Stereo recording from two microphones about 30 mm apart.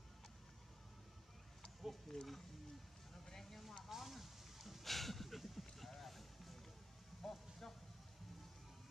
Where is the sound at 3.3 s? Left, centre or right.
Centre.